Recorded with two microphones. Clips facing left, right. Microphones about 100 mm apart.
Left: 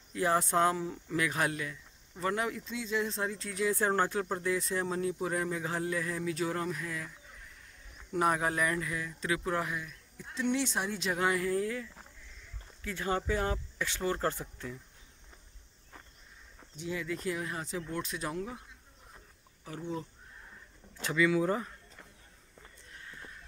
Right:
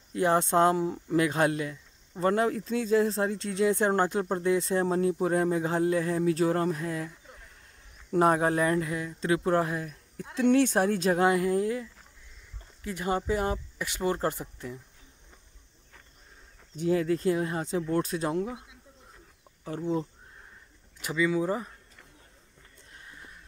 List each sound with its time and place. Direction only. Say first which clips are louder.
0.2 s speech: right 5 dB; 25° right (ahead or behind)
8.1 s speech: right 6 dB; 35° right (ahead or behind)
10.1 s speech: right 9 dB; 60° right (ahead or behind); by 11.2 s 45° right (ahead or behind)
11.2 s speech: right 6 dB; 25° right (ahead or behind)
16.7 s speech: right 11 dB; 45° right (ahead or behind)
17.2 s speech: right 8 dB; 30° right (ahead or behind)
19.6 s speech: right 8 dB; 35° right (ahead or behind)
21.0 s speech: right 1 dB; 5° right (ahead or behind)
23.0 s a sound: left 1 dB; 15° right (ahead or behind)